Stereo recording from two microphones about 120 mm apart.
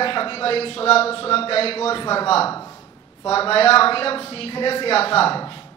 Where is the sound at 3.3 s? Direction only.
55° left (ahead or behind).